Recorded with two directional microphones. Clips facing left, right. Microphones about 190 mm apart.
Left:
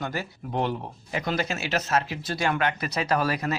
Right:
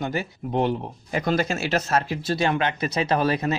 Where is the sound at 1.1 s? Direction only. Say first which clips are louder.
Right 5 dB; 45° right (ahead or behind).